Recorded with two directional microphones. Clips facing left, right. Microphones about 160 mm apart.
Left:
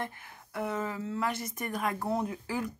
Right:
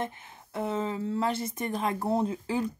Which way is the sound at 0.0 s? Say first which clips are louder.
Right 4 dB; 20° right (ahead or behind).